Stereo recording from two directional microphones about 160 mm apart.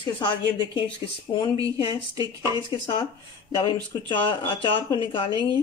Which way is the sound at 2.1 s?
25° right (ahead or behind).